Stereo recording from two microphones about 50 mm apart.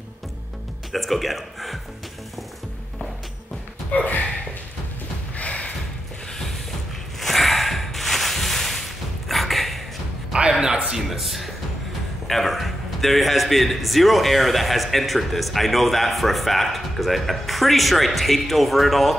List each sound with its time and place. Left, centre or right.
0.9 s a man's voice: centre
3.9 s speech: left
5.4 s a sound: left
7.2 s a sound: centre
10.3 s speech: centre
10.9 s a man's voice: centre